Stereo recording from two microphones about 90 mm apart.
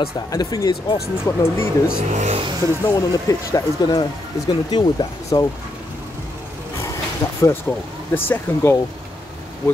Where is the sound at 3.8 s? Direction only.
55° left (ahead or behind).